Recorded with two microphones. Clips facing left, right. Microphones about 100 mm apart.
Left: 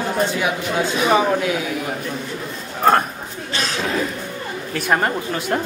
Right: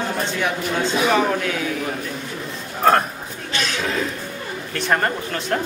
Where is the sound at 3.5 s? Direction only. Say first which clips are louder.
Even; 35° left (ahead or behind).